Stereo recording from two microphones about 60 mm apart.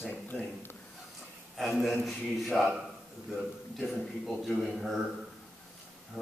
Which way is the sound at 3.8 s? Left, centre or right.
Centre.